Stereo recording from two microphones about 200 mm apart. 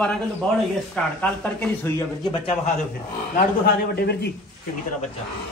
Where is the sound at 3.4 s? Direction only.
50° left (ahead or behind).